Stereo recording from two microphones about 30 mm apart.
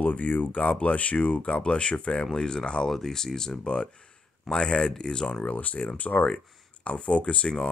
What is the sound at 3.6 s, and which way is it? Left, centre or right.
Speech, left.